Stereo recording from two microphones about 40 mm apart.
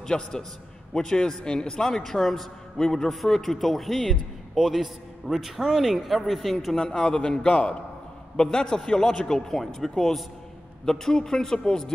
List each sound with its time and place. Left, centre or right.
0.0 s a man's voice: centre
6.7 s a man's voice: centre